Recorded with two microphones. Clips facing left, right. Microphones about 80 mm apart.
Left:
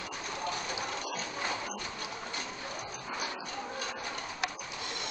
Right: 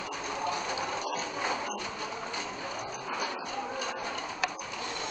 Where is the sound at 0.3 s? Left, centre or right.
Centre.